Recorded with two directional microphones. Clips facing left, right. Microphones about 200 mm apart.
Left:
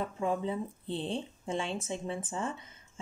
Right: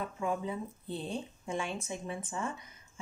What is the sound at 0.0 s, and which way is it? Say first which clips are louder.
Speech: left 3 dB; 30° left (ahead or behind).